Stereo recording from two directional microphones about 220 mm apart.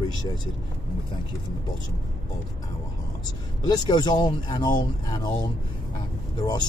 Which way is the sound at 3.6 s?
20° left (ahead or behind).